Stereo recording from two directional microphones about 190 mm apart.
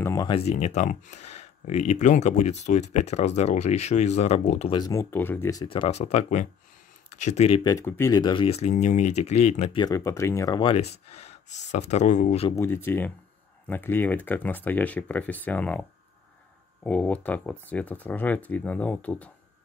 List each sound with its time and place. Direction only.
0.0 s a sound: 15° left (ahead or behind)
0.3 s speech: 35° left (ahead or behind)
4.7 s speech: 20° left (ahead or behind); by 7.6 s 35° left (ahead or behind)
7.6 s speech: 15° left (ahead or behind); by 12.4 s 40° left (ahead or behind)
12.5 s speech: 10° left (ahead or behind)